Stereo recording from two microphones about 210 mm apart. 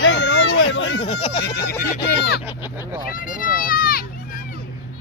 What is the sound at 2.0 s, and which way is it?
Fowl, 50° left (ahead or behind).